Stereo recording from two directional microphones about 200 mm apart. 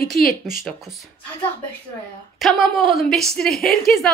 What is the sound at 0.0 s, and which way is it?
Speech, 50° left (ahead or behind).